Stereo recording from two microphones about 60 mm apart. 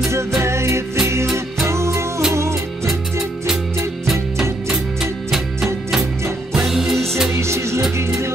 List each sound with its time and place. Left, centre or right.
0.4 s music: right
2.9 s music: centre
7.3 s music: right